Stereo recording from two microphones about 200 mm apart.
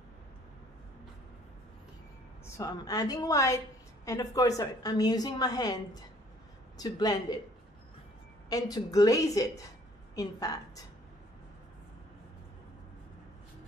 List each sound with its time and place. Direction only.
2.5 s a woman's voice: 20° left (ahead or behind)
8.5 s a woman's voice: 20° left (ahead or behind)